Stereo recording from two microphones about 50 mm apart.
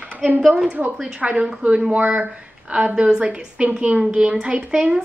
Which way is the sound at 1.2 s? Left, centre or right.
Right.